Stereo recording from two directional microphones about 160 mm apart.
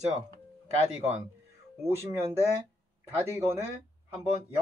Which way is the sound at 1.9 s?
15° right (ahead or behind).